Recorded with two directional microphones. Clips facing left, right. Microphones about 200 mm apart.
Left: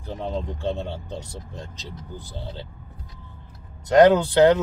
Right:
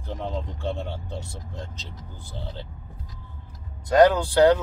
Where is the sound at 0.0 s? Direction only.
15° left (ahead or behind).